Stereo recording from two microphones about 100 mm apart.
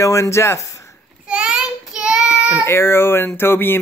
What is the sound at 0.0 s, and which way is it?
Speech, 30° left (ahead or behind).